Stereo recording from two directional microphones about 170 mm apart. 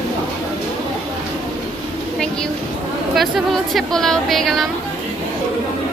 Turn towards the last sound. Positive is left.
turn(degrees=0)  # may be behind; listen again after turning